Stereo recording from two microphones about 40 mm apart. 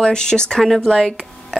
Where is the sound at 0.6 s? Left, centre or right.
Centre.